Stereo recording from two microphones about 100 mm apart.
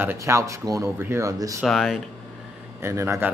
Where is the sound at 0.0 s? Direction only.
25° right (ahead or behind).